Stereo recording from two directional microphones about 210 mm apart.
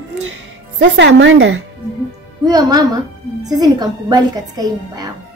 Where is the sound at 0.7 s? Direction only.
60° right (ahead or behind).